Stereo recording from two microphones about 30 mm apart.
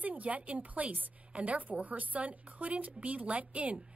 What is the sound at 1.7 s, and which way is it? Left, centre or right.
A woman's voice, right.